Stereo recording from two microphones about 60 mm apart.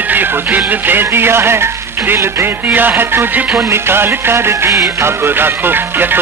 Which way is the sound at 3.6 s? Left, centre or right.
Right.